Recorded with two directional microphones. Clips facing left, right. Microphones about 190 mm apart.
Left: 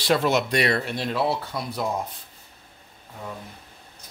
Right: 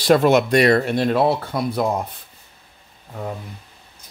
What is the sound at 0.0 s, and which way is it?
Speech, 50° right (ahead or behind).